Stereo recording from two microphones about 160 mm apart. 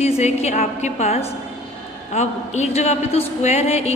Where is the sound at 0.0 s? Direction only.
45° left (ahead or behind).